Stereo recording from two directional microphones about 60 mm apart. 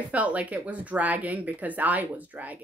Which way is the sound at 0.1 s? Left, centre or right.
Right.